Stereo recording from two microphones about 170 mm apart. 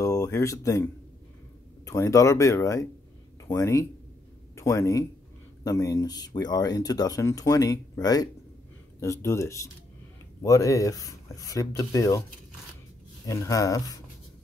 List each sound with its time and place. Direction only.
0.0 s speech: 20° left (ahead or behind)
1.9 s speech: 20° left (ahead or behind)